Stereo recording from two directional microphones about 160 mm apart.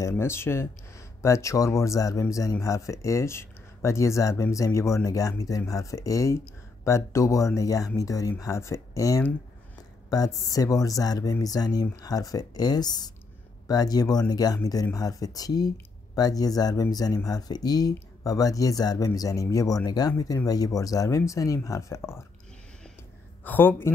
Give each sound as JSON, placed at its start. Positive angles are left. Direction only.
{"t": 0.0, "sound": "speech", "side_deg": 15}
{"t": 23.4, "sound": "speech", "side_deg": 10}